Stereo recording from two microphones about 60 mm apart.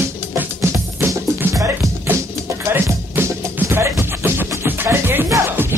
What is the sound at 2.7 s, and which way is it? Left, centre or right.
Music, right.